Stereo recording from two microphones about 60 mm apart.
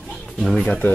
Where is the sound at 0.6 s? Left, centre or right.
Centre.